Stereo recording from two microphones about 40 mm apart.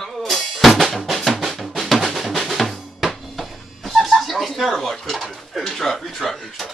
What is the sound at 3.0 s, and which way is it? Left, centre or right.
Music, centre.